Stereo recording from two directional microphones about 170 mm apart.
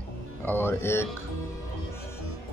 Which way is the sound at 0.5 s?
15° left (ahead or behind).